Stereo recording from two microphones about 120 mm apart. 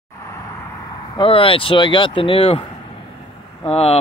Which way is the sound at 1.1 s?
50° left (ahead or behind).